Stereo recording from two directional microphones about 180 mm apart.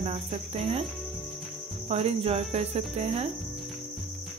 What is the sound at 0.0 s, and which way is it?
Cricket, 30° right (ahead or behind).